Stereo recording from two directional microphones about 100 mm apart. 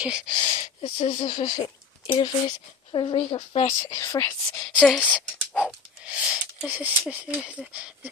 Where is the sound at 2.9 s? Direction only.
60° left (ahead or behind).